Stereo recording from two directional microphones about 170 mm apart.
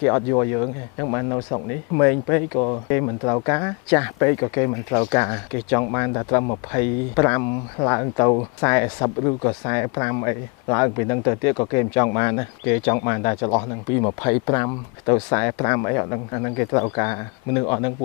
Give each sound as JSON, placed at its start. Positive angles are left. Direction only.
{"t": 0.0, "sound": "speech", "side_deg": 20}